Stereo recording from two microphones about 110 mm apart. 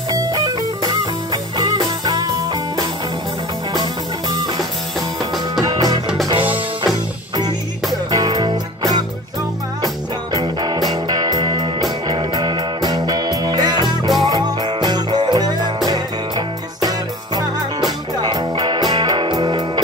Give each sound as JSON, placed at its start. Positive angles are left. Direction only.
{"t": 0.1, "sound": "music", "side_deg": -35}
{"t": 8.1, "sound": "music", "side_deg": -35}
{"t": 10.3, "sound": "music", "side_deg": -40}